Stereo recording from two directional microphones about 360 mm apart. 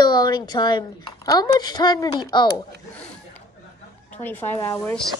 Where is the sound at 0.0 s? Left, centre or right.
Centre.